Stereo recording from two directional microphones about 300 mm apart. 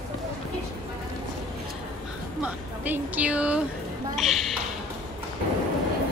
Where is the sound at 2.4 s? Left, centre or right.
Centre.